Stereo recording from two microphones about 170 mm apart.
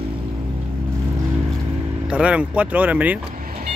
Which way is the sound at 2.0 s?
5° right (ahead or behind).